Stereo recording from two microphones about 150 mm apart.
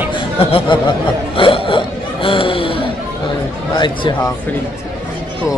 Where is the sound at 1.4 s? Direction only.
35° left (ahead or behind).